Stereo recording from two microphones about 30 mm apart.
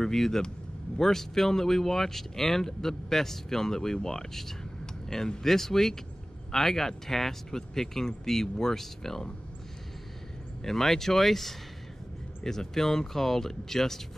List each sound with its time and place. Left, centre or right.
0.0 s speech: centre
10.6 s speech: centre